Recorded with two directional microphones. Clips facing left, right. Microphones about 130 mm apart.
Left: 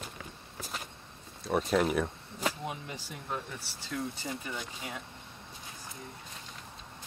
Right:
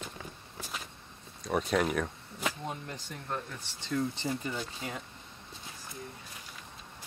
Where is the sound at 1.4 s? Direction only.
Centre (ahead or behind).